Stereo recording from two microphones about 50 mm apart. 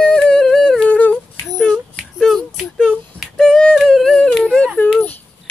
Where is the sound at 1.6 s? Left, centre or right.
Centre.